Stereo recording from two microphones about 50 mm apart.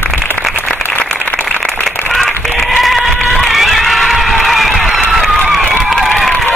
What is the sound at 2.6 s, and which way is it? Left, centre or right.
Cat, centre.